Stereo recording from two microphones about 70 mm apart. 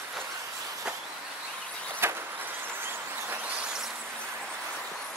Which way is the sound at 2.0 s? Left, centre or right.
Right.